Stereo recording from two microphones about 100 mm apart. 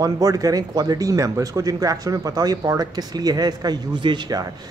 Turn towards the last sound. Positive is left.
turn(degrees=-45)  # may be behind; listen again after turning